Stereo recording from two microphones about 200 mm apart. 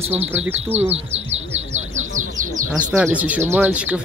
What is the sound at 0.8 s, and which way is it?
Speech, 30° right (ahead or behind).